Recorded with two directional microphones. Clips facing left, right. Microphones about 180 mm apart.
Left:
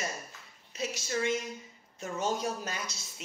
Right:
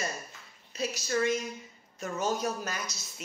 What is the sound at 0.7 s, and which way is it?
A man's voice, 25° left (ahead or behind).